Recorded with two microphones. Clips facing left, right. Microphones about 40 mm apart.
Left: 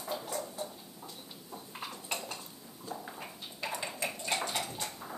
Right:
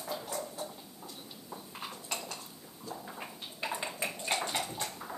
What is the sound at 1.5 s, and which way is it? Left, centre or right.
Dishes, centre.